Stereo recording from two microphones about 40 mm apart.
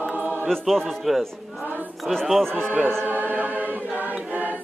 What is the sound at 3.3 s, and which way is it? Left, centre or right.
A capella, right.